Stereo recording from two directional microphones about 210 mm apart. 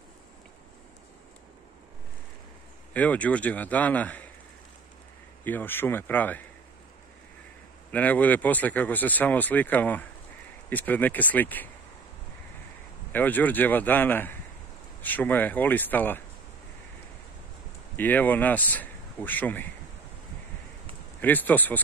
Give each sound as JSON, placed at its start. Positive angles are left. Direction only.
{"t": 2.9, "sound": "speech", "side_deg": 5}
{"t": 5.4, "sound": "speech", "side_deg": 10}
{"t": 7.9, "sound": "speech", "side_deg": 5}
{"t": 13.1, "sound": "speech", "side_deg": 10}
{"t": 17.9, "sound": "speech", "side_deg": 10}
{"t": 21.2, "sound": "speech", "side_deg": 10}